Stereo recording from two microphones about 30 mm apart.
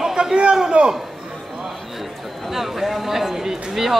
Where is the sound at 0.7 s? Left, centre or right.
Right.